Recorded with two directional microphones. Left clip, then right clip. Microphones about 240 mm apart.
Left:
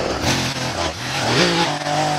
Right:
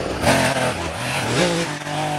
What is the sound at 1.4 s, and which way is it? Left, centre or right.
Vehicle, left.